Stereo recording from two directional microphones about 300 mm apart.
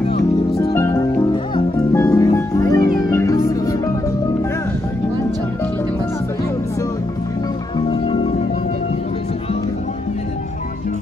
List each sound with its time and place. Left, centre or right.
0.1 s music: centre
7.9 s music: centre